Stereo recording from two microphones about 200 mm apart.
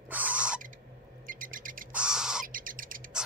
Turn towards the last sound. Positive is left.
turn(degrees=-45)  # may be behind; listen again after turning